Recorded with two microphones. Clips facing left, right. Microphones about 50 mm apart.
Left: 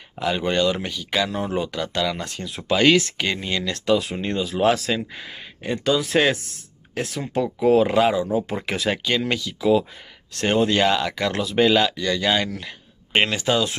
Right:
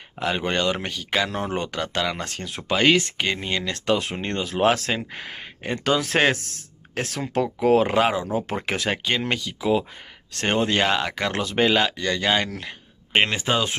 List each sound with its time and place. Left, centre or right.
0.2 s speech: right
1.3 s speech: right
2.7 s speech: right
7.4 s speech: right
13.3 s speech: right